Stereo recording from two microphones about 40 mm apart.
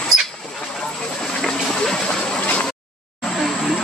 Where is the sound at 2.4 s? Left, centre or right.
Left.